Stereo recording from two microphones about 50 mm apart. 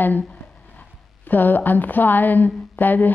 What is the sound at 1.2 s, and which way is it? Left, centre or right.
Speech, left.